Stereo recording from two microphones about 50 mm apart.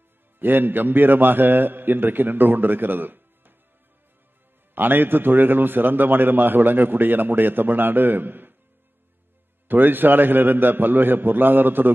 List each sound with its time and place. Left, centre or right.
0.4 s a man's voice: right
4.7 s a man's voice: right
9.7 s a man's voice: right